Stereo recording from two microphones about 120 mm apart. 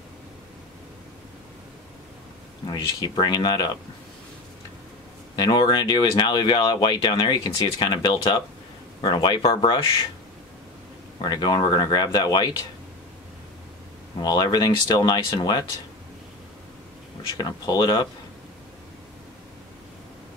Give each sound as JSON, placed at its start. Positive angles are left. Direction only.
{"t": 2.7, "sound": "speech", "side_deg": 35}
{"t": 5.3, "sound": "speech", "side_deg": 35}
{"t": 11.1, "sound": "speech", "side_deg": 35}
{"t": 14.1, "sound": "speech", "side_deg": 35}
{"t": 17.4, "sound": "speech", "side_deg": 40}